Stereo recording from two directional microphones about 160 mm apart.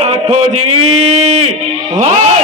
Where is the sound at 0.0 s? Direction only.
40° right (ahead or behind).